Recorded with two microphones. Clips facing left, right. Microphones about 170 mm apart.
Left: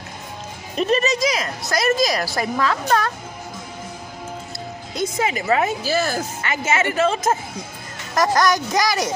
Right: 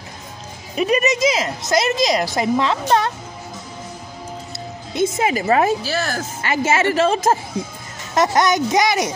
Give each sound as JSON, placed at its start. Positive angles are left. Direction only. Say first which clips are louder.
{"t": 0.7, "sound": "a woman's voice", "louder": "right 1 dB", "side_deg": -10}
{"t": 4.9, "sound": "a woman's voice", "louder": "right 4 dB", "side_deg": -25}
{"t": 5.9, "sound": "speech", "louder": "left 2 dB", "side_deg": 10}
{"t": 6.4, "sound": "a woman's voice", "louder": "right 5 dB", "side_deg": -30}